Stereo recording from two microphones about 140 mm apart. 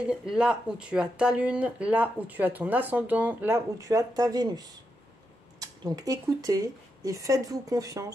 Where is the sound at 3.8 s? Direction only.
25° right (ahead or behind).